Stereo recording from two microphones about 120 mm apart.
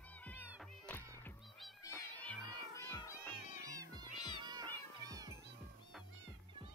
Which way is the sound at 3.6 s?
30° right (ahead or behind).